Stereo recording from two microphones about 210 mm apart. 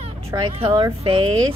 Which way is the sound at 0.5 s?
25° right (ahead or behind).